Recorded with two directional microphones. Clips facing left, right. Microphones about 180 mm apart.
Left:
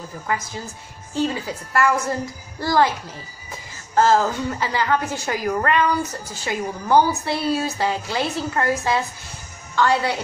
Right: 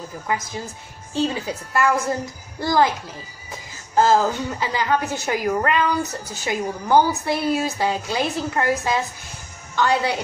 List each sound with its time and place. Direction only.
1.1 s a woman's voice: 20° right (ahead or behind)
3.9 s a woman's voice: 15° right (ahead or behind)